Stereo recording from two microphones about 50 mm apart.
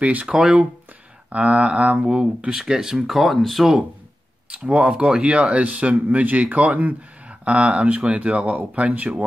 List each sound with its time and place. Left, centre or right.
0.0 s speech: right
1.3 s speech: right
2.0 s speech: centre
3.1 s speech: centre
4.5 s speech: right
7.2 s speech: right